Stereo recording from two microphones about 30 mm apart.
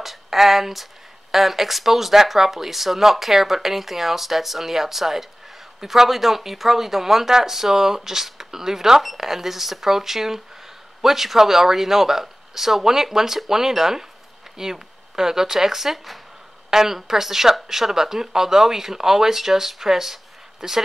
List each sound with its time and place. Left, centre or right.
0.0 s speech: centre